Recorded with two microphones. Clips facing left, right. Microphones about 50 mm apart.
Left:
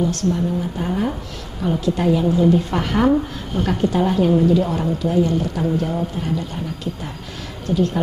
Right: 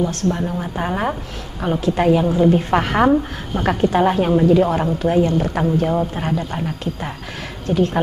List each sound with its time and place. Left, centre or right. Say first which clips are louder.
0.0 s a woman's voice: even; right